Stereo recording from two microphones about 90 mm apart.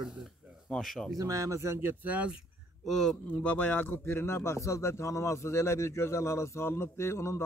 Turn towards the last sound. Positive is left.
turn(degrees=30)  # may be behind; listen again after turning